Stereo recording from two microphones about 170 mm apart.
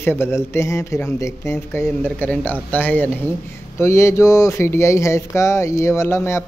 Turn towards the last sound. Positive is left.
turn(degrees=15)  # may be behind; listen again after turning